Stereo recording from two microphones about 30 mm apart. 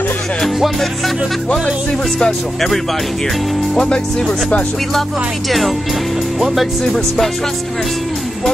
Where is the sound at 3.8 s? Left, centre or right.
Left.